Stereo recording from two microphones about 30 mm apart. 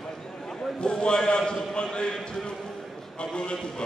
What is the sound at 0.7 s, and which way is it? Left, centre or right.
A man's voice, left.